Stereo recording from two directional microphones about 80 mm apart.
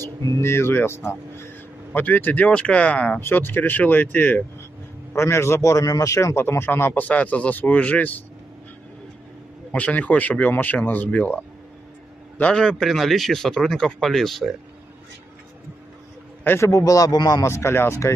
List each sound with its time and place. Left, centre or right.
0.4 s speech: left; by 3.2 s centre
3.2 s speech: left
5.1 s speech: left; by 8.2 s centre
9.7 s speech: centre
12.4 s a man's voice: centre
16.4 s a man's voice: left
17.5 s speech: left